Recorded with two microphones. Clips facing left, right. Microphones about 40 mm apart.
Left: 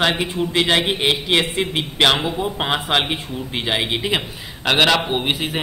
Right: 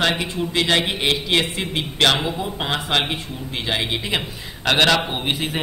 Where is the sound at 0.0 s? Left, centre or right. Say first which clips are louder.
Left 2 dB; centre.